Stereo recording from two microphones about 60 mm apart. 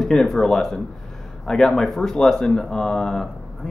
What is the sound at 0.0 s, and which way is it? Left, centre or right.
Speech, centre.